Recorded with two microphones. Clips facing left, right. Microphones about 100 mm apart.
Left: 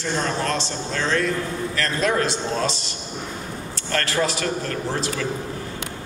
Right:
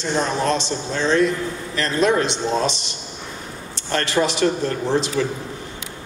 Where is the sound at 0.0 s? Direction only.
20° right (ahead or behind).